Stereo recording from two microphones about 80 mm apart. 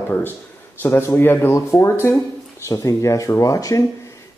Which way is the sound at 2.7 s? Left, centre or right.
Left.